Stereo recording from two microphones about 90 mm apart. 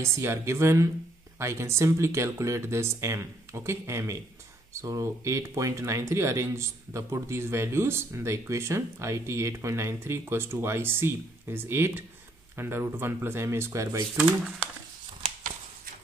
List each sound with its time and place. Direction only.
0.0 s speech: 30° right (ahead or behind)